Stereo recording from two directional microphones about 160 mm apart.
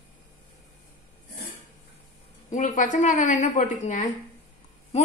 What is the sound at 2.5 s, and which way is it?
A woman's voice, 50° left (ahead or behind).